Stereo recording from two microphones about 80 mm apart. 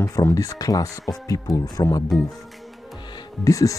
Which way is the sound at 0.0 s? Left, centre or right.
Left.